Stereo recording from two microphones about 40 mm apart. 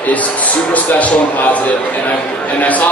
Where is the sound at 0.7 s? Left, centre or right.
Left.